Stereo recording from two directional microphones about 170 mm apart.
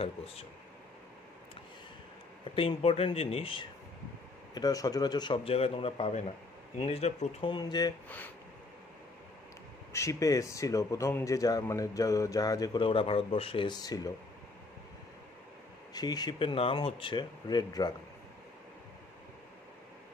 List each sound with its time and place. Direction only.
2.5 s speech: 35° left (ahead or behind)
4.6 s speech: 20° left (ahead or behind); by 7.5 s 40° left (ahead or behind)
7.5 s speech: 25° left (ahead or behind)
9.9 s speech: 20° left (ahead or behind)
15.9 s speech: 25° left (ahead or behind)